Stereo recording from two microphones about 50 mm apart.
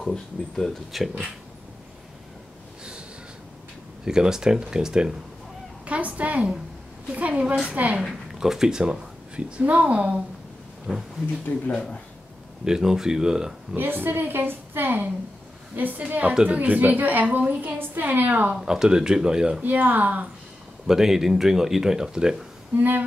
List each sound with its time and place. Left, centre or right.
0.0 s speech: centre
4.0 s speech: centre
5.9 s speech: right
8.4 s speech: centre
9.6 s speech: right
10.9 s speech: centre
12.6 s speech: centre
13.7 s a woman's voice: right
16.0 s a woman's voice: right
18.6 s speech: centre
19.6 s a woman's voice: right
20.8 s speech: centre
22.8 s a woman's voice: right